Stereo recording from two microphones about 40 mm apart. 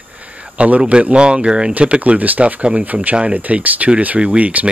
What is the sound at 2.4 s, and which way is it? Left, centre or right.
Speech, right.